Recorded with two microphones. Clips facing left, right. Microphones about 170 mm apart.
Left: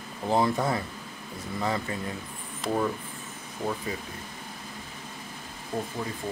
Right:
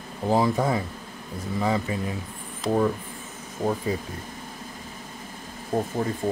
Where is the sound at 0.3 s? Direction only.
5° right (ahead or behind).